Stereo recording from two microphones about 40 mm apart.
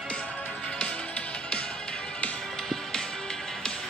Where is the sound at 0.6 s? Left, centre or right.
Left.